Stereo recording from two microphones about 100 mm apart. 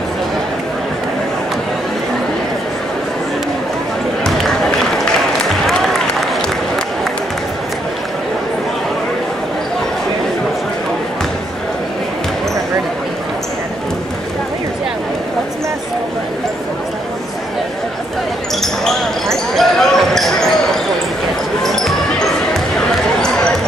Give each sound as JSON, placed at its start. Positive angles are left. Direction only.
{"t": 4.2, "sound": "a sound", "side_deg": 5}
{"t": 5.5, "sound": "applause", "side_deg": 5}
{"t": 18.6, "sound": "basketball bounce", "side_deg": 5}